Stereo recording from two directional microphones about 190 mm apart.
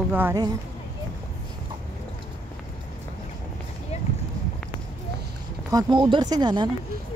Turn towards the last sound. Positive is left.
turn(degrees=-20)  # may be behind; listen again after turning